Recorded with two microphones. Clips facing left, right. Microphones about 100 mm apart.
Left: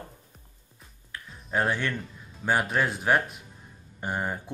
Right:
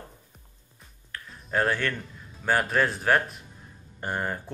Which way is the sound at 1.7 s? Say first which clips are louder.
Right 1 dB; 15° left (ahead or behind).